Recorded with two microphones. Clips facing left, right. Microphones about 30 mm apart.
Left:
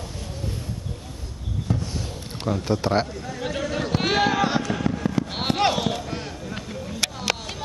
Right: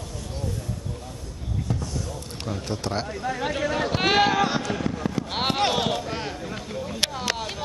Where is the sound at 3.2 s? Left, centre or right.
Centre.